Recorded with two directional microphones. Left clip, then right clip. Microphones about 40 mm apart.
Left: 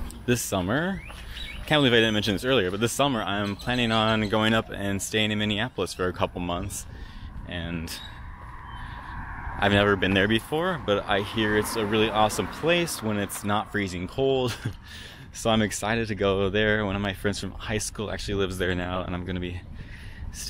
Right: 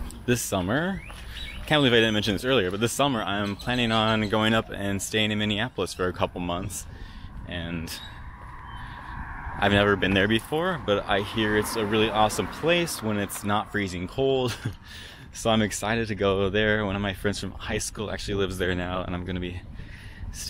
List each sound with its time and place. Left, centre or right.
0.3 s speech: centre
1.4 s speech: centre
9.1 s a sound: centre
9.6 s speech: centre
13.0 s speech: left